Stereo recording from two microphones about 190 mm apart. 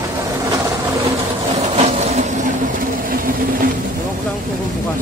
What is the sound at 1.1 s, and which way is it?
Vehicle, 35° right (ahead or behind).